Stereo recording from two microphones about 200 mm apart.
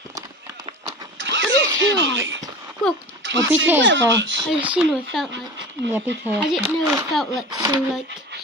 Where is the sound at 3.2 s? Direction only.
65° right (ahead or behind).